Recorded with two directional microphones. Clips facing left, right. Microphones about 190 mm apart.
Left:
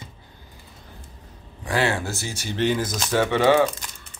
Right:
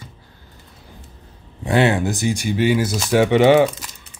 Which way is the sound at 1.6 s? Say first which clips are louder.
Right 7 dB; 20° right (ahead or behind).